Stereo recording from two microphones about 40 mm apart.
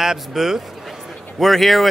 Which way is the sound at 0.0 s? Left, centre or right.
Centre.